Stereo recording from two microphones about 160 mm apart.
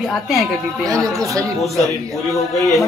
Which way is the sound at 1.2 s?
20° right (ahead or behind).